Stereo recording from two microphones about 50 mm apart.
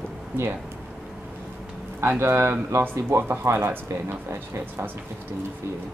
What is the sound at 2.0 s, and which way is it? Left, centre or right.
Speech, right.